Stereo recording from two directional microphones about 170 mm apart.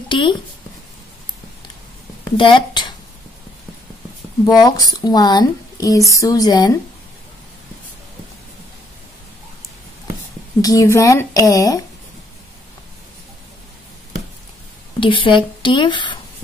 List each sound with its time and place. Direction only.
0.1 s speech: 30° left (ahead or behind)
2.3 s a woman's voice: 30° left (ahead or behind)
4.5 s speech: 20° left (ahead or behind)
10.6 s speech: 20° left (ahead or behind)
15.0 s speech: 30° left (ahead or behind)